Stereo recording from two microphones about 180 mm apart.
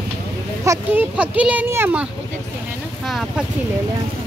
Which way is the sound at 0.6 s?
10° right (ahead or behind).